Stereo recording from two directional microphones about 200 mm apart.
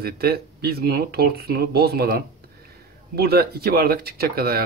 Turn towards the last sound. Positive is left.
turn(degrees=-50)  # may be behind; listen again after turning